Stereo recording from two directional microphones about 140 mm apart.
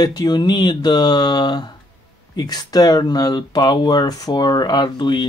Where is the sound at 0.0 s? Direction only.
30° left (ahead or behind).